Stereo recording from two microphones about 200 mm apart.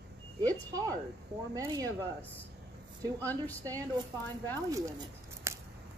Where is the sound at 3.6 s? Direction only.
20° right (ahead or behind).